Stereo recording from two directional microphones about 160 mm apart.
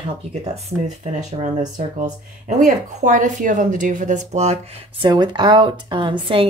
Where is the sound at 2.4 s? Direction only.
50° right (ahead or behind).